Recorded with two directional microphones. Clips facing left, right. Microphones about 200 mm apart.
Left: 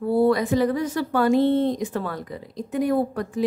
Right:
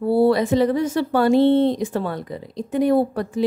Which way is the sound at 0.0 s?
30° right (ahead or behind).